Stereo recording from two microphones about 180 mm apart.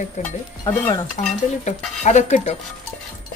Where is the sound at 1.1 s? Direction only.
40° left (ahead or behind).